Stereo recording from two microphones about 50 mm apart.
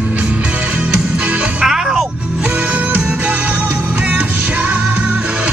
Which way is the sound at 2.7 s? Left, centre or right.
Right.